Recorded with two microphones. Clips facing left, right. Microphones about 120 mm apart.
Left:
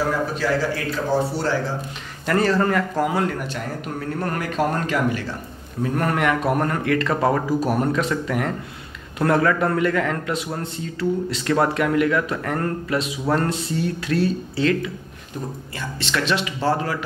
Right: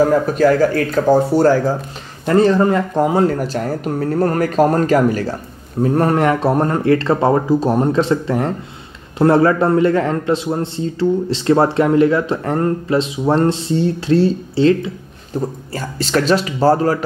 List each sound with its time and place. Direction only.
0.1 s speech: 50° right (ahead or behind)
2.2 s a man's voice: 20° right (ahead or behind); by 17.0 s 40° right (ahead or behind)